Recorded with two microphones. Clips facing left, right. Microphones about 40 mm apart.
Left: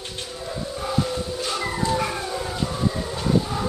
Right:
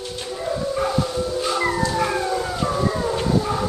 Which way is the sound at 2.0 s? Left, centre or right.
Centre.